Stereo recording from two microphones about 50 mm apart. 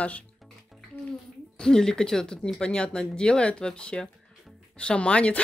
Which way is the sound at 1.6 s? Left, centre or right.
Centre.